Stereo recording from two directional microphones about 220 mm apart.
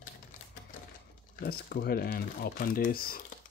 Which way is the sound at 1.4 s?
45° left (ahead or behind).